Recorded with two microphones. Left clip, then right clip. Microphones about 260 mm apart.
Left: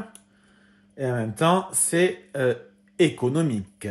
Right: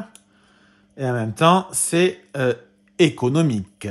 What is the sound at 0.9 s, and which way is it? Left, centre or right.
Speech, right.